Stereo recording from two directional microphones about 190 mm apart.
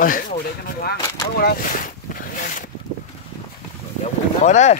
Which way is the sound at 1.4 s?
50° left (ahead or behind).